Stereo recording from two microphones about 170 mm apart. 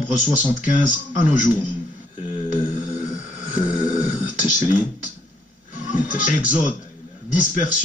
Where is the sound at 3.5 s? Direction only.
50° left (ahead or behind).